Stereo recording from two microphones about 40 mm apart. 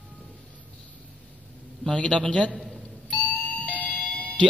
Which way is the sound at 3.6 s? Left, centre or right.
Left.